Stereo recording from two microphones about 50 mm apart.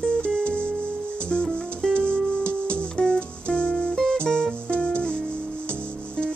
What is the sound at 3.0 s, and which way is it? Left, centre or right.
Music, left.